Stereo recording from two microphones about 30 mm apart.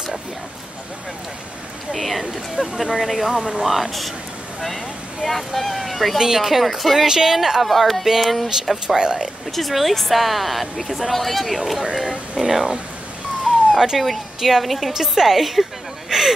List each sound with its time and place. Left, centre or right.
1.9 s a woman's voice: centre
5.2 s a woman's voice: centre
6.1 s a woman's voice: centre
7.6 s a woman's voice: centre
8.8 s speech: right
9.5 s a woman's voice: centre
13.5 s a sound: centre
13.9 s a woman's voice: centre
14.9 s a woman's voice: centre
16.1 s a sound: centre